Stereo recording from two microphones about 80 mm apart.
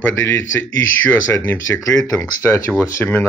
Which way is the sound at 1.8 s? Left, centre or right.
Left.